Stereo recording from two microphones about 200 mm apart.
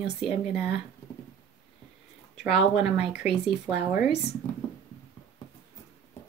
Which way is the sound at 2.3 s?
5° right (ahead or behind).